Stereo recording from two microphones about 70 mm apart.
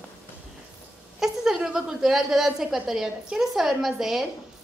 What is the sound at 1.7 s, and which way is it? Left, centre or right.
A woman's voice, centre.